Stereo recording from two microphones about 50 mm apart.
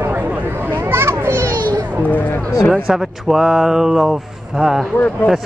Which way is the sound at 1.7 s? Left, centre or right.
Left.